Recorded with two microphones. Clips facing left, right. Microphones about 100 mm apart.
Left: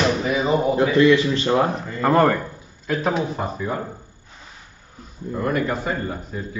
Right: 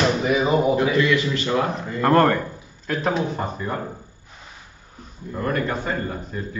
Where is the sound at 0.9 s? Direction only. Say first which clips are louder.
Left 5 dB; 30° left (ahead or behind).